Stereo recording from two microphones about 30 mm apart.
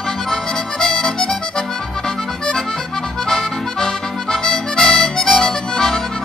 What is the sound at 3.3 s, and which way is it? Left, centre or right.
Music, centre.